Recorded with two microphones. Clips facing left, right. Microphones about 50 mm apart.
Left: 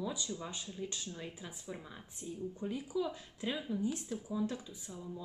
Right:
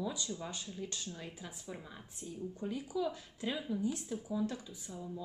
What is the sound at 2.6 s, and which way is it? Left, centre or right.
Speech, centre.